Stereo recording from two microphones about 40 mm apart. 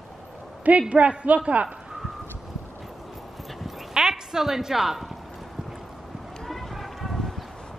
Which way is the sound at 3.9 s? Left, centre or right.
Centre.